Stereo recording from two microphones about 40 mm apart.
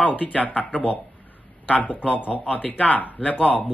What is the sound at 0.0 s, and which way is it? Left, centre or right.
Speech, left.